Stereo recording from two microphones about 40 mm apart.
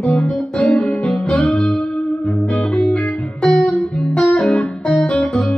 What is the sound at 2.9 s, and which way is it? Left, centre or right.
Music, left.